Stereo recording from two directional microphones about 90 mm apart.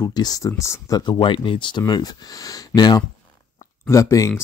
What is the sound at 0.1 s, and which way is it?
Speech, 45° left (ahead or behind).